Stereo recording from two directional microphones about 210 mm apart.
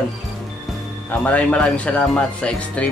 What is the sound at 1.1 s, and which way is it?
Speech, 5° left (ahead or behind).